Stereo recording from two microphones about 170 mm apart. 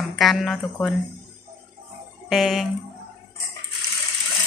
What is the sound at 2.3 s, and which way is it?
Speech, centre (ahead or behind).